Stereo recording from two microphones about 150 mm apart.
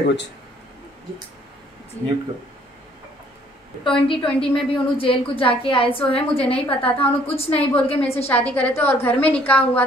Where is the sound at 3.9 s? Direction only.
35° left (ahead or behind).